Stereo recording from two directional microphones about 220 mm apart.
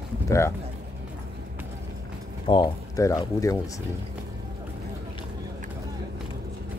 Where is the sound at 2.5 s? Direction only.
15° left (ahead or behind).